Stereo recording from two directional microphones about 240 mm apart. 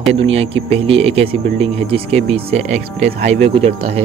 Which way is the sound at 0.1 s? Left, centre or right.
Right.